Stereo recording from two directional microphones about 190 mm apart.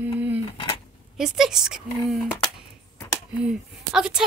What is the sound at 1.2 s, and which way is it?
A woman's voice, centre (ahead or behind).